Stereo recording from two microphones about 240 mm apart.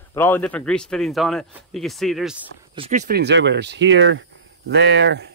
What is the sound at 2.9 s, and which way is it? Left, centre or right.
Speech, right.